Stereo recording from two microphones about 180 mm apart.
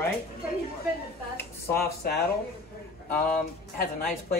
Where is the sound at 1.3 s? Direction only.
60° left (ahead or behind).